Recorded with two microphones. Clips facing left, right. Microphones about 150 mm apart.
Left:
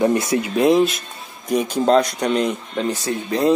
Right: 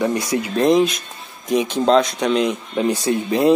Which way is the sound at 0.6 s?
5° left (ahead or behind).